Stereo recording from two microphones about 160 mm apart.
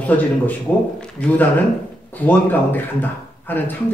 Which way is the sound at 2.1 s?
10° left (ahead or behind).